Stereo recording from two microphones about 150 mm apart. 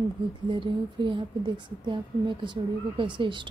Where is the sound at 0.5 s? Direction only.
35° right (ahead or behind).